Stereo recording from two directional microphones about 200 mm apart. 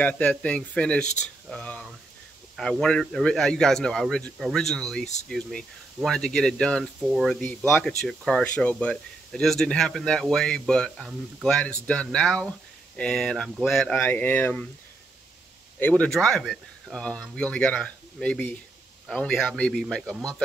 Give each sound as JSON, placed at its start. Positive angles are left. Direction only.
{"t": 0.0, "sound": "speech", "side_deg": 5}
{"t": 15.8, "sound": "speech", "side_deg": 5}